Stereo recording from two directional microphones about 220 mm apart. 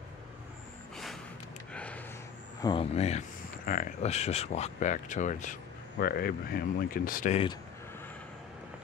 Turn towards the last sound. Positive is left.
turn(degrees=40)  # may be behind; listen again after turning